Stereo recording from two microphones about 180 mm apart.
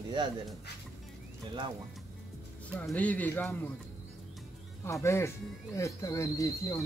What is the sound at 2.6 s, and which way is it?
Speech, 5° left (ahead or behind).